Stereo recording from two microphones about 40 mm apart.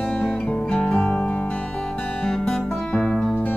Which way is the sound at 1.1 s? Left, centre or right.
Left.